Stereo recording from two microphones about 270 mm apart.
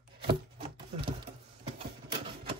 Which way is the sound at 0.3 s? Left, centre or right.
Right.